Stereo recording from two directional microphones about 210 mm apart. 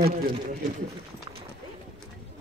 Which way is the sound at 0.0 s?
45° right (ahead or behind).